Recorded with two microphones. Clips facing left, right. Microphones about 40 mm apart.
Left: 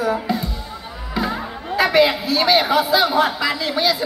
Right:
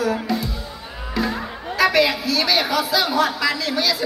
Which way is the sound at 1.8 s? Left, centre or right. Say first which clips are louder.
Left 1 dB; left.